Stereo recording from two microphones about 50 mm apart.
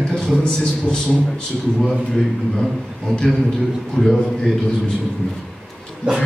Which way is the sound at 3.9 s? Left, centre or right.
Centre.